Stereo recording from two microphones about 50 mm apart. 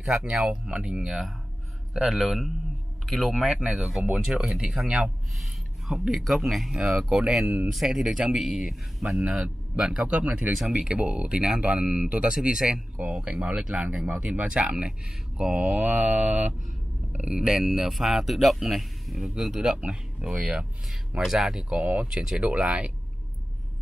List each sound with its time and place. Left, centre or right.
0.1 s speech: centre
1.0 s speech: centre
4.8 s speech: centre
6.0 s speech: centre
6.9 s speech: centre
10.0 s speech: right
11.8 s speech: centre
12.1 s speech: right
15.5 s a man's voice: right; by 21.7 s centre
21.7 s speech: right
22.1 s speech: centre
22.4 s speech: right